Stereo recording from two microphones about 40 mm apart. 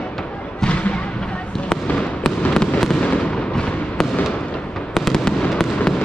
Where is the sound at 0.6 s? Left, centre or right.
Left.